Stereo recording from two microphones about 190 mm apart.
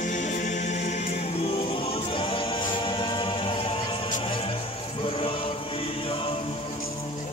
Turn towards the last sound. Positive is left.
turn(degrees=30)  # may be behind; listen again after turning